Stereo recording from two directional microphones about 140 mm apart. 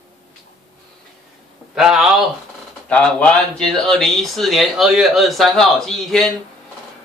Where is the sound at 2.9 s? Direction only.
5° left (ahead or behind).